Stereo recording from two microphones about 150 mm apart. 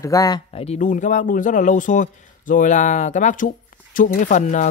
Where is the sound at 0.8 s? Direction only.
60° left (ahead or behind).